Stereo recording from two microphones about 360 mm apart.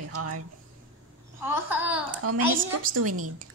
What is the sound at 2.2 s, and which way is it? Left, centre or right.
Speech, right.